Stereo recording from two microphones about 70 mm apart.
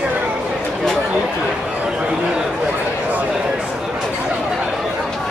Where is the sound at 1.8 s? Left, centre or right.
Centre.